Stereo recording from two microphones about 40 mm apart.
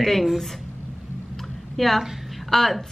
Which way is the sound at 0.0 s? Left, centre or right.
Centre.